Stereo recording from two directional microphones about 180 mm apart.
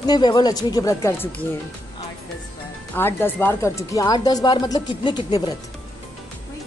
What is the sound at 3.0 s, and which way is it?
Speech, 10° left (ahead or behind).